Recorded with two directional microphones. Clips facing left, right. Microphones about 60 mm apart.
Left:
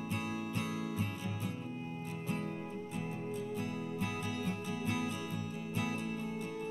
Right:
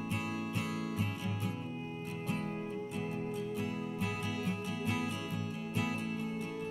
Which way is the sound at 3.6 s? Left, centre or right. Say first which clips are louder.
Right 1 dB; right.